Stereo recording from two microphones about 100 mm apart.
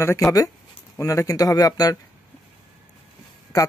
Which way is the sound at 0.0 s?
30° left (ahead or behind).